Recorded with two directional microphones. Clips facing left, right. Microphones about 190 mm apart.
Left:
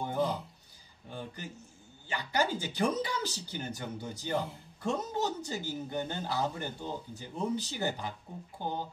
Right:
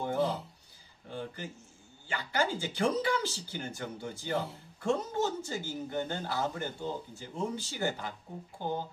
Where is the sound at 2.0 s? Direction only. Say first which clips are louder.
Even; 15° left (ahead or behind).